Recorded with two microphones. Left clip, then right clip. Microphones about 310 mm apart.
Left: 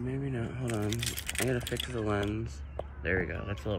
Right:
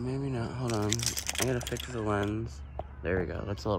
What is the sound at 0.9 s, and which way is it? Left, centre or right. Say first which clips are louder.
Speech: right 3 dB; right.